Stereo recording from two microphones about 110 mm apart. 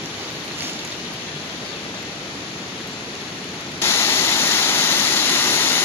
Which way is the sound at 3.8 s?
20° left (ahead or behind).